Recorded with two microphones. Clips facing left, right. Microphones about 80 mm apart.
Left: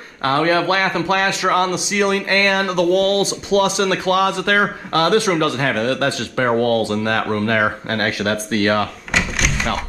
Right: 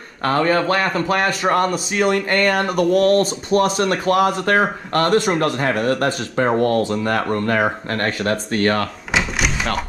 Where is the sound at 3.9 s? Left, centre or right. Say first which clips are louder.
Even; left.